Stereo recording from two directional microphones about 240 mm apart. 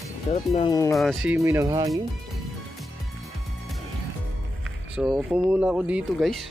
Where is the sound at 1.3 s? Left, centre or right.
Centre.